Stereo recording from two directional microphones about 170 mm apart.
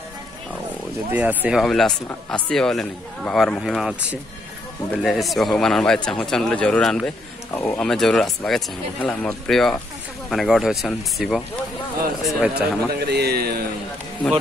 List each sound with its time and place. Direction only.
1.1 s speech: 10° right (ahead or behind)
1.6 s speech: centre (ahead or behind)
12.9 s a man's voice: 70° right (ahead or behind)